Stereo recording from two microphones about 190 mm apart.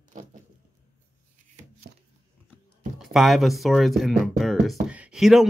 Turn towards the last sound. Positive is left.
turn(degrees=0)  # may be behind; listen again after turning